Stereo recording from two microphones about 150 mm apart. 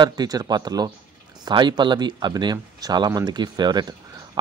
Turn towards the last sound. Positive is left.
turn(degrees=-30)  # may be behind; listen again after turning